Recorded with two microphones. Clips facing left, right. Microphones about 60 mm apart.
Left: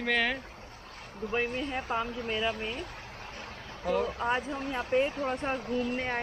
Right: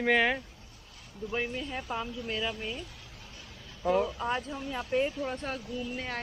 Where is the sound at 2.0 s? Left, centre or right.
Left.